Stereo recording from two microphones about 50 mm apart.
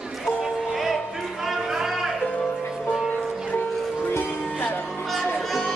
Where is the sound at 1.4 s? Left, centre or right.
Centre.